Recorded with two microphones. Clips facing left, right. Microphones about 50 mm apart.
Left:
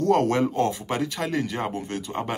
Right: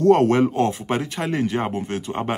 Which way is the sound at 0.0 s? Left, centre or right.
Right.